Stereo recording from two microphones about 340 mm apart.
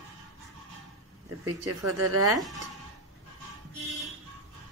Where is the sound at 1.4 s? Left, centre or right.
Right.